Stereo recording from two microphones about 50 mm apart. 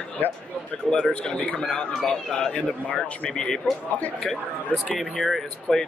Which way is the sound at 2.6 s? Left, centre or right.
Left.